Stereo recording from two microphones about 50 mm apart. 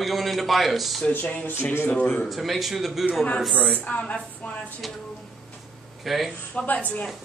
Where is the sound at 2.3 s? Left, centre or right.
Centre.